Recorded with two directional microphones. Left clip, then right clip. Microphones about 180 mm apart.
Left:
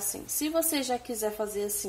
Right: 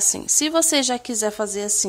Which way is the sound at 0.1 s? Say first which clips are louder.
Right 5 dB; 55° right (ahead or behind).